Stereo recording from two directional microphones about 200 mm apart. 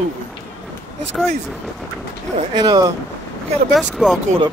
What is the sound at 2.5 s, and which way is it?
Speech, 20° right (ahead or behind).